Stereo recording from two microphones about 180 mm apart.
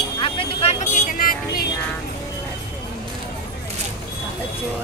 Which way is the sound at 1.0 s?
50° left (ahead or behind).